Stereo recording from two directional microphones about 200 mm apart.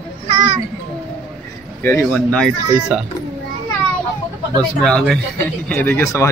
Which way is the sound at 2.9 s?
5° right (ahead or behind).